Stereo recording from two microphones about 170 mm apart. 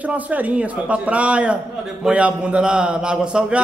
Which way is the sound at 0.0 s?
10° right (ahead or behind).